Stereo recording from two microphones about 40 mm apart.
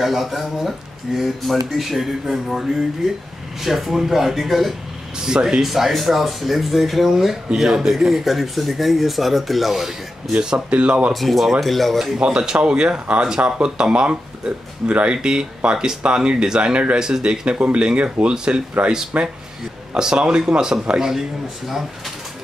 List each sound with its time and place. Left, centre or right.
0.0 s speech: centre
3.6 s speech: centre
5.2 s speech: centre
5.7 s speech: centre
10.7 s speech: right
11.1 s speech: centre
12.3 s speech: centre